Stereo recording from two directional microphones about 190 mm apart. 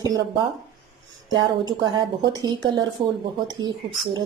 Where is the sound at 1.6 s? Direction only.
20° right (ahead or behind).